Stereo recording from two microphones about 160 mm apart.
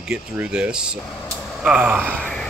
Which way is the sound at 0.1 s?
5° right (ahead or behind).